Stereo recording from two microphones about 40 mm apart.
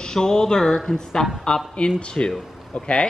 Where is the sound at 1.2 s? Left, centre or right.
Centre.